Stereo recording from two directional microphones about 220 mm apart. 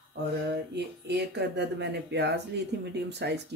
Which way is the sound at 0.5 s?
50° right (ahead or behind).